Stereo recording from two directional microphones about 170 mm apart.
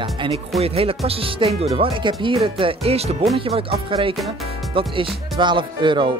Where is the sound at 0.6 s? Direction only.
35° right (ahead or behind).